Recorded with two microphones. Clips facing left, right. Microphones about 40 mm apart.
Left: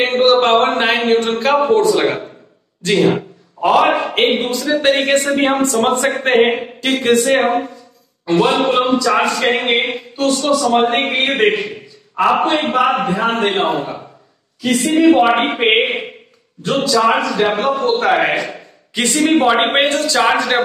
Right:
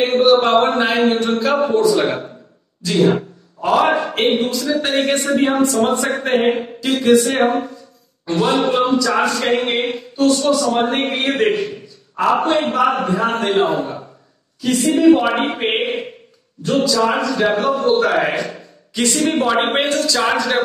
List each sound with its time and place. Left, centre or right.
0.0 s a man's voice: left
5.4 s a man's voice: left
7.2 s a man's voice: left
8.6 s a man's voice: left
10.2 s a man's voice: left
15.0 s a man's voice: left
15.4 s a sound: left
16.6 s a man's voice: left